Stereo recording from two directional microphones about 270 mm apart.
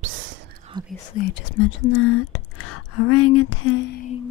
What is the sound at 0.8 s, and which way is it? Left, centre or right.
Whispering, centre.